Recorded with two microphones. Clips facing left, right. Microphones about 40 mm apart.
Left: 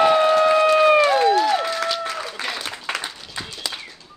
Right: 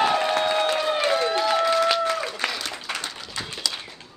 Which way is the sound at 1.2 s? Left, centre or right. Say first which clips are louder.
Left 6 dB; centre.